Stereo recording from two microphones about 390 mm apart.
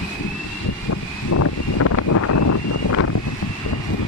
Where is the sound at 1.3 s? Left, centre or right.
Left.